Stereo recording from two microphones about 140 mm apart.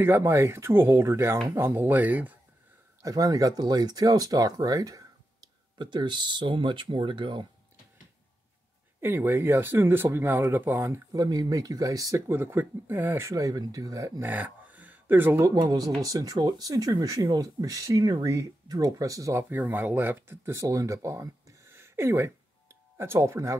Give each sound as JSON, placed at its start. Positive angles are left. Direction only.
{"t": 0.0, "sound": "speech", "side_deg": -15}
{"t": 3.0, "sound": "speech", "side_deg": -25}
{"t": 9.0, "sound": "speech", "side_deg": -15}
{"t": 11.2, "sound": "speech", "side_deg": -25}
{"t": 13.3, "sound": "speech", "side_deg": -25}
{"t": 14.2, "sound": "speech", "side_deg": -10}
{"t": 15.5, "sound": "speech", "side_deg": -25}